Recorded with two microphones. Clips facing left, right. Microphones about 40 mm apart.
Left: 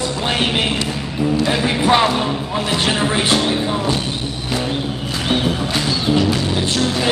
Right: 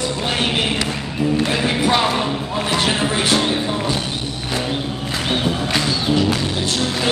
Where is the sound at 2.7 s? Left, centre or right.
Centre.